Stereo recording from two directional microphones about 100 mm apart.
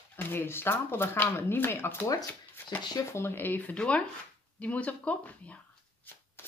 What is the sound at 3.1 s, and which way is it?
Speech, 25° left (ahead or behind).